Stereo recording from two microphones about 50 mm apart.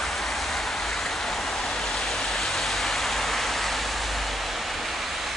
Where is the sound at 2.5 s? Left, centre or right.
Centre.